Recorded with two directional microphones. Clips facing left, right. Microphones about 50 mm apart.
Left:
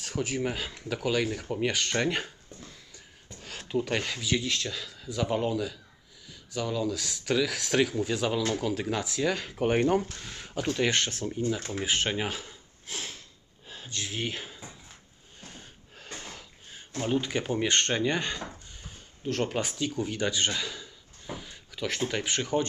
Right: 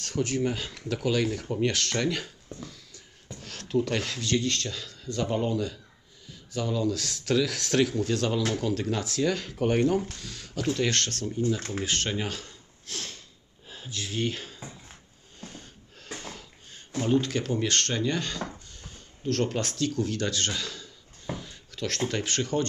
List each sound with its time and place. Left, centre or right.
0.0 s speech: centre
2.0 s speech: left
2.6 s a sound: centre
3.3 s speech: centre
13.7 s speech: centre
15.4 s a sound: centre
17.0 s speech: centre